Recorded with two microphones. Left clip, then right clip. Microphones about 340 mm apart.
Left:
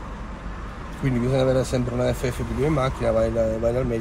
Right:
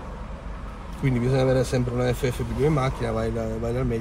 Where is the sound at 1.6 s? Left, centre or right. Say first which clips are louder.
Left 1 dB; centre.